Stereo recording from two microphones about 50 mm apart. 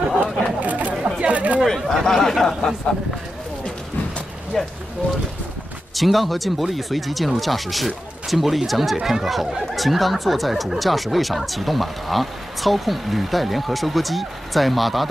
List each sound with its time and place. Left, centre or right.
0.2 s a sound: right
1.1 s chatter: right
1.7 s speech: centre
4.5 s speech: centre
5.9 s speech: centre